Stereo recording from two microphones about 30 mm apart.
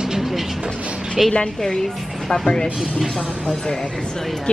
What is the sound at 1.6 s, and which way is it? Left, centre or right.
Speech, centre.